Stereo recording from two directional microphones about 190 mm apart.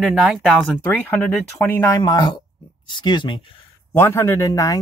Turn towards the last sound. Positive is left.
turn(degrees=15)  # may be behind; listen again after turning